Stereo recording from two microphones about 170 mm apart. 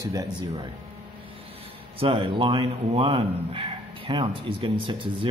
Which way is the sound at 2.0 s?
30° right (ahead or behind).